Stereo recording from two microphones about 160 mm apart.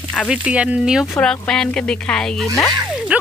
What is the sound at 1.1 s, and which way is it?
Speech, 5° left (ahead or behind).